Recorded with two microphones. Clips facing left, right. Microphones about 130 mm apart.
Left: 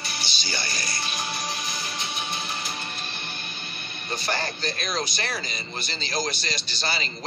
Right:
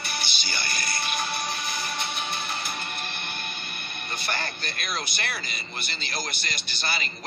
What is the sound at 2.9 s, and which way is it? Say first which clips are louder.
Music: right 1 dB; 55° right (ahead or behind).